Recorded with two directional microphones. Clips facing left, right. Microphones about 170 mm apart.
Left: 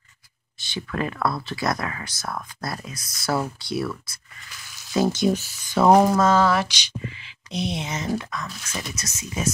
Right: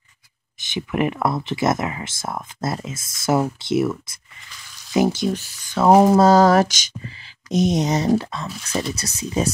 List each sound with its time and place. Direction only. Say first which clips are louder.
0.6 s speech: right 6 dB; 20° right (ahead or behind)
5.2 s speech: left 2 dB; 5° left (ahead or behind)
6.1 s speech: right 6 dB; 35° right (ahead or behind)